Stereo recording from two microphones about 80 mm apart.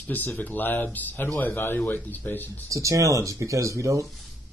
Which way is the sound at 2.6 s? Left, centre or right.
Right.